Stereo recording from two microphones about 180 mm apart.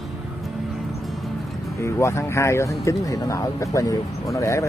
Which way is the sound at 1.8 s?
15° left (ahead or behind).